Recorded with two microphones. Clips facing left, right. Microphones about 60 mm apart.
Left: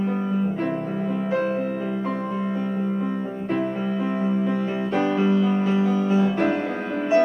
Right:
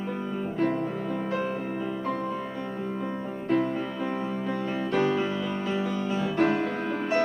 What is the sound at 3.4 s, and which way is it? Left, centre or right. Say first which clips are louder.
Music: even; centre.